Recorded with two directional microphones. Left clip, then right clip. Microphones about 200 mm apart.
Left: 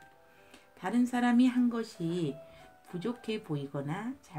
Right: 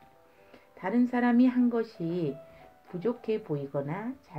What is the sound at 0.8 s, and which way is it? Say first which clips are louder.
Speech: right 3 dB; 45° left (ahead or behind).